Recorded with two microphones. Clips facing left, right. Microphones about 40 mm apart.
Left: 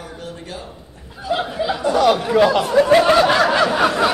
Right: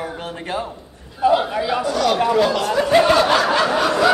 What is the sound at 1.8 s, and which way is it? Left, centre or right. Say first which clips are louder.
Speech: left 7 dB; centre.